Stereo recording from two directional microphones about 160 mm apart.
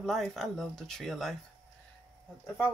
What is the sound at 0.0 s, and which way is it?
Speech, centre (ahead or behind).